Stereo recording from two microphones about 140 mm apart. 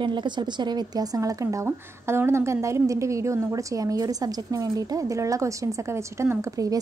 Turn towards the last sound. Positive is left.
turn(degrees=-25)  # may be behind; listen again after turning